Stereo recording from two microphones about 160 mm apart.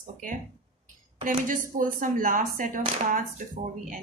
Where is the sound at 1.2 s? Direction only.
55° right (ahead or behind).